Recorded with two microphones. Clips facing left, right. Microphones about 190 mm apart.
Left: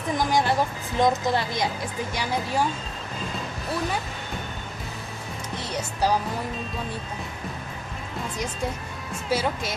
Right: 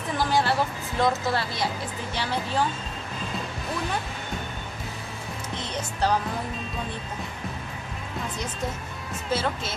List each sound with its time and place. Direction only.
0.2 s a sound: 15° left (ahead or behind)
5.6 s music: 10° left (ahead or behind)
9.3 s speech: 10° left (ahead or behind)